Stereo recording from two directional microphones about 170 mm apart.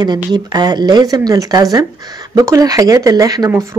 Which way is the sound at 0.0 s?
25° right (ahead or behind).